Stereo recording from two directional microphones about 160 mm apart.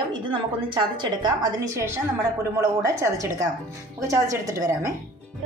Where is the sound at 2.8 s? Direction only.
20° right (ahead or behind).